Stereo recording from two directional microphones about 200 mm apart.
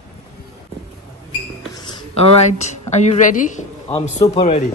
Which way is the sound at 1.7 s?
20° left (ahead or behind).